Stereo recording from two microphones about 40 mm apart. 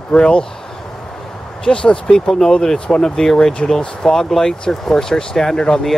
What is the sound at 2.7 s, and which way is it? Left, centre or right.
Speech, left.